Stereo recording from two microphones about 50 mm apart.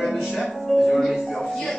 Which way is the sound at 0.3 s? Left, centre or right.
Centre.